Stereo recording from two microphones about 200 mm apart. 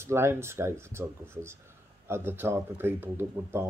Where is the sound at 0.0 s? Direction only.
10° right (ahead or behind).